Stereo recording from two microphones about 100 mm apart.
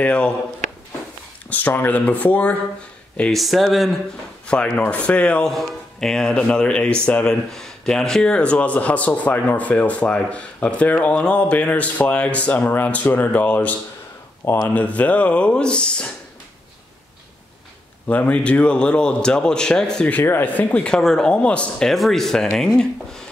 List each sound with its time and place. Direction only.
0.0 s speech: 10° left (ahead or behind)
1.5 s speech: 15° left (ahead or behind)
3.2 s speech: centre (ahead or behind)
18.0 s speech: 15° left (ahead or behind)